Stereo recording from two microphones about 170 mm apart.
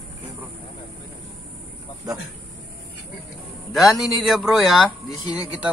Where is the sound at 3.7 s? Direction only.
Centre (ahead or behind).